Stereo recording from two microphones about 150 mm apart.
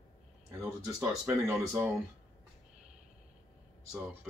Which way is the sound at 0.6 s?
10° right (ahead or behind).